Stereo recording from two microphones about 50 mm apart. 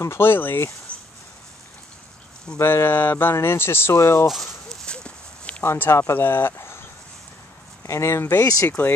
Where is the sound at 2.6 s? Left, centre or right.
Left.